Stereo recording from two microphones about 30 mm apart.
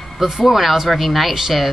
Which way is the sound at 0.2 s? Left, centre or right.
Centre.